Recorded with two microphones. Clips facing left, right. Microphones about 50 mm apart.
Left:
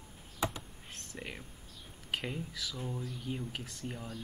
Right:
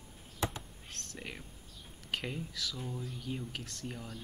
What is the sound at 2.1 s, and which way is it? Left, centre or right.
Speech, centre.